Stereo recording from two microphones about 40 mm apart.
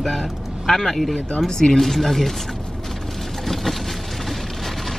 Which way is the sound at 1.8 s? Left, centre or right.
Centre.